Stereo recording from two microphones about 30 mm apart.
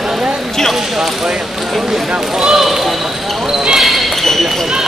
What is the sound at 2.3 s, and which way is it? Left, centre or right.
Speech, right.